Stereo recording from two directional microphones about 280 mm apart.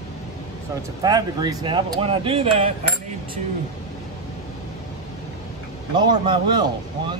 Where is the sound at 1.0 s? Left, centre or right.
Centre.